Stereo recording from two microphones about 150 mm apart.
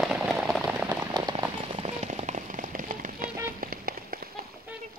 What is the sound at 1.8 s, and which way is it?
Rain on surface, 45° right (ahead or behind).